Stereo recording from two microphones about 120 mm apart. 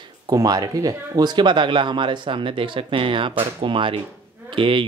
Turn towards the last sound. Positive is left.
turn(degrees=-45)  # may be behind; listen again after turning